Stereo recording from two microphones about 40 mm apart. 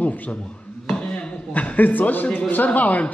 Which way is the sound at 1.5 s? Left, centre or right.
Left.